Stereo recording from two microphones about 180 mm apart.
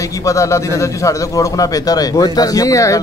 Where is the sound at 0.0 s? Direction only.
20° left (ahead or behind).